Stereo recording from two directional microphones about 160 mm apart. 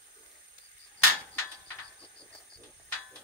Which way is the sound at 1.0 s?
15° left (ahead or behind).